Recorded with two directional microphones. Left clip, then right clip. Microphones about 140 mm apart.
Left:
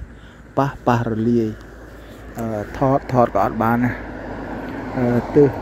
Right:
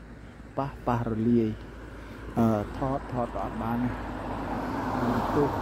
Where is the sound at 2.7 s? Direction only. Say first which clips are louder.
Left 13 dB; 40° left (ahead or behind).